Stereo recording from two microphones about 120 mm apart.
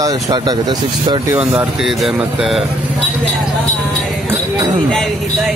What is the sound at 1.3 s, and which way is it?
Speech, 15° right (ahead or behind).